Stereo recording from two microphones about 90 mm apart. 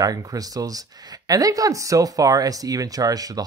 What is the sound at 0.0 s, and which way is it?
Speech, 45° right (ahead or behind).